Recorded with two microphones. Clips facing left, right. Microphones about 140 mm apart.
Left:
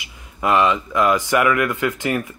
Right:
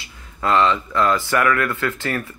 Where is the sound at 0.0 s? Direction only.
15° left (ahead or behind).